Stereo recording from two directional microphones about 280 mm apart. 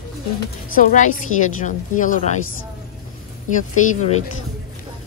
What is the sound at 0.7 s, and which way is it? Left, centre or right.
A woman's voice, left.